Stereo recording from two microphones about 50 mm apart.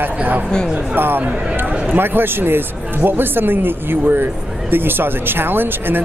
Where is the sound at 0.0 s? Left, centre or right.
Right.